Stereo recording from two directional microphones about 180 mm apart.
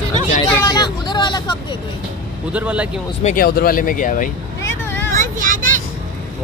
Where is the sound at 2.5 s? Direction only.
5° right (ahead or behind).